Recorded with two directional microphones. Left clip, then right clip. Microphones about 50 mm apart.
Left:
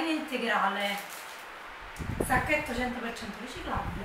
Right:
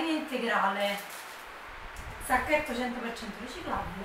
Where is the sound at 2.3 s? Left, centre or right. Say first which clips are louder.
Right 1 dB; centre.